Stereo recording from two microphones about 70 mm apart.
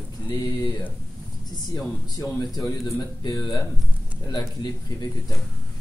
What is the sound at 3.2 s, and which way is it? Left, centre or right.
Speech, left.